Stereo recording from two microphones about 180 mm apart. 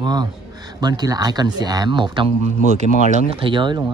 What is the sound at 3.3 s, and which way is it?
Speech, 30° right (ahead or behind).